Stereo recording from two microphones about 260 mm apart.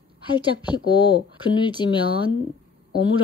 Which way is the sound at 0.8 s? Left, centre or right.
Left.